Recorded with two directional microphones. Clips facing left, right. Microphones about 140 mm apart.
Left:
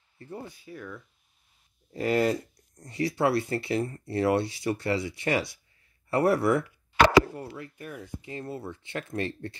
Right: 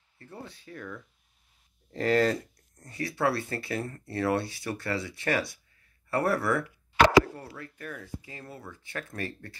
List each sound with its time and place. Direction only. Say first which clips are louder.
0.2 s speech: left 4 dB; 15° left (ahead or behind)